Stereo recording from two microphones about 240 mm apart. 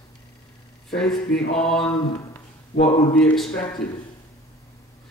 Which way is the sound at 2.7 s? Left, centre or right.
Left.